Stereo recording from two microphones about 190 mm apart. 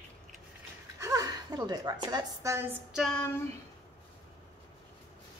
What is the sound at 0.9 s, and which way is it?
A woman's voice, 15° right (ahead or behind).